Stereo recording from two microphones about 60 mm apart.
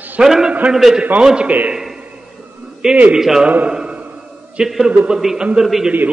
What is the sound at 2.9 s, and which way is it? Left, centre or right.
Speech, right.